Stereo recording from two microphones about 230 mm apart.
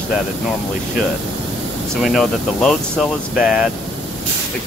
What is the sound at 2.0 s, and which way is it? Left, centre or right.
Speech, centre.